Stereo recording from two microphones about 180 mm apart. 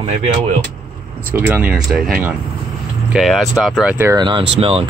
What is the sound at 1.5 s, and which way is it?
Speech, 10° right (ahead or behind).